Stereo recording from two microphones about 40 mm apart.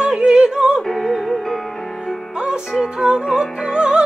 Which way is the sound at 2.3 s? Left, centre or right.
Right.